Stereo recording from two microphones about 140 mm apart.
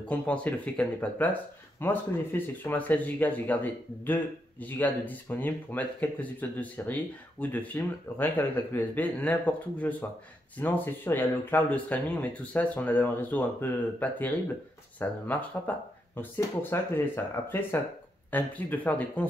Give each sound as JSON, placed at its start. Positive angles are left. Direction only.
{"t": 0.0, "sound": "speech", "side_deg": 10}